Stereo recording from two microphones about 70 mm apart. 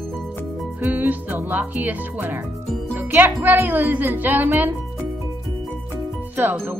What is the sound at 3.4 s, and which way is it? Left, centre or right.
Child singing, right.